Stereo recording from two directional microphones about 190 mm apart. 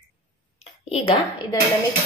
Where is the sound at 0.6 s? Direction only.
30° left (ahead or behind).